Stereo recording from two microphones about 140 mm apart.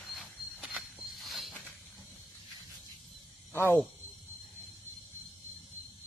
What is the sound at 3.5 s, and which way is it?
Speech, 15° left (ahead or behind).